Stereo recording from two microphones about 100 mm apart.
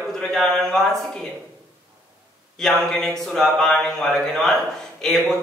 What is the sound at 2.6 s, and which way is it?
A man's voice, 5° left (ahead or behind).